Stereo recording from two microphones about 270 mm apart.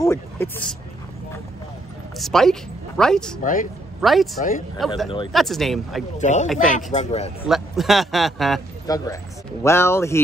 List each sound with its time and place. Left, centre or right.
0.0 s speech: centre
2.1 s speech: centre
4.4 s speech: left
4.7 s speech: centre
6.1 s speech: left
7.4 s speech: centre
8.8 s speech: centre